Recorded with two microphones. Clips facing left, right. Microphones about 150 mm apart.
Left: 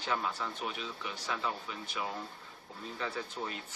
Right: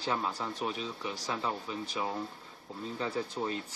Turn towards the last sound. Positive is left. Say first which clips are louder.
# right 5 dB
turn(degrees=-35)  # may be behind; listen again after turning